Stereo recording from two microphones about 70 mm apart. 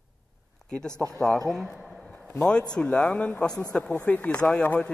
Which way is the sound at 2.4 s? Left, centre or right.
Centre.